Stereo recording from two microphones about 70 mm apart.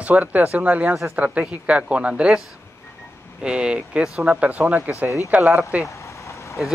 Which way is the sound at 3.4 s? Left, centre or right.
Centre.